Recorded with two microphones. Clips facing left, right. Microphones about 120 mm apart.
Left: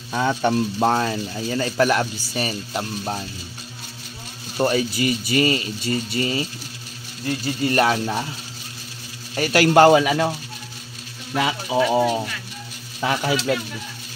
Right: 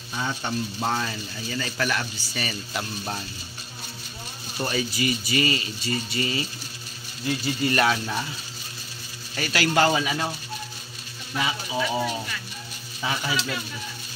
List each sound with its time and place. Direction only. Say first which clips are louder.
0.1 s speech: left 9 dB; 70° left (ahead or behind); by 3.3 s 35° left (ahead or behind)
4.6 s speech: left 7 dB; 50° left (ahead or behind)
9.4 s speech: left 8 dB; 50° left (ahead or behind)
11.3 s speech: left 7 dB; 55° left (ahead or behind)